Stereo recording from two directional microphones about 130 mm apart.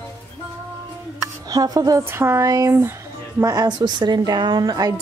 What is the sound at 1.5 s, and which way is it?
Speech, 30° right (ahead or behind).